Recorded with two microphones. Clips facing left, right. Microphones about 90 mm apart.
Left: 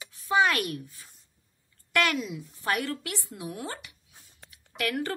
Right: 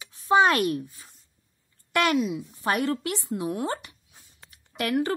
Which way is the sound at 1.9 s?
25° right (ahead or behind).